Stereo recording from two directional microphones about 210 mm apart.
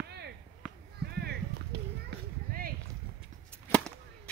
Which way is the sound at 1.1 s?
50° right (ahead or behind).